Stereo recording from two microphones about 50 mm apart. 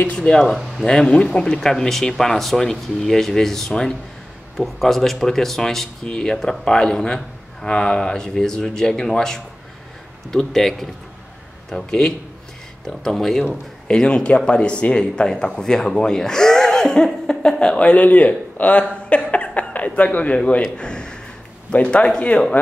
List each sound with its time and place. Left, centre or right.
0.1 s speech: centre
6.3 s speech: centre
6.6 s speech: centre
13.8 s a man's voice: centre